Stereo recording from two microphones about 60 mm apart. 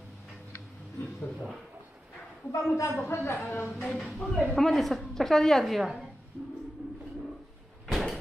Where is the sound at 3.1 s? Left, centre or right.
Left.